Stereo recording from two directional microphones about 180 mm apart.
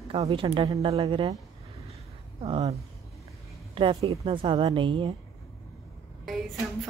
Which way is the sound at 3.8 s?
30° right (ahead or behind).